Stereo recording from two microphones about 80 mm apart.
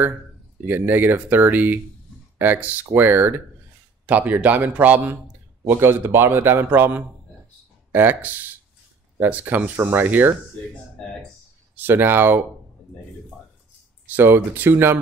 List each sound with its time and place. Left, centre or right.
0.7 s a man's voice: right
11.7 s a man's voice: right
14.1 s a man's voice: right